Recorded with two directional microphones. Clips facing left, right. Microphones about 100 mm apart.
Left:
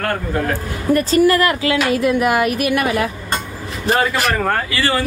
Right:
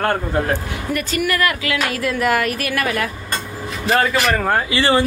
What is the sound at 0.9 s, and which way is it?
Speech, 30° left (ahead or behind).